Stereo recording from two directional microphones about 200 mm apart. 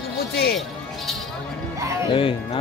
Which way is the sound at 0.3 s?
50° left (ahead or behind).